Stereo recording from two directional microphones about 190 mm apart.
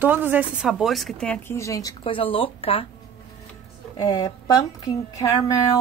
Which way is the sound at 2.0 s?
30° left (ahead or behind).